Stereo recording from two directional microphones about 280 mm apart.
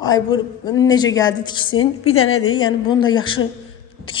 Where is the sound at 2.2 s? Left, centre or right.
Left.